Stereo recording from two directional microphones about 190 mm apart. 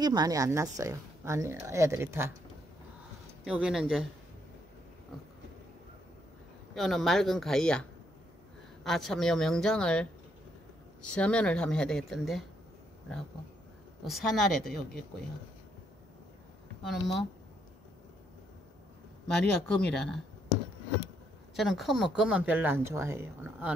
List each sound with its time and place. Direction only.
0.0 s a woman's voice: 20° right (ahead or behind)
3.4 s speech: 5° right (ahead or behind)
6.7 s speech: centre (ahead or behind)
8.8 s speech: centre (ahead or behind)
11.1 s speech: 5° left (ahead or behind)
14.0 s speech: centre (ahead or behind)
16.8 s speech: centre (ahead or behind)
19.9 s speech: 5° left (ahead or behind)
21.5 s a woman's voice: centre (ahead or behind)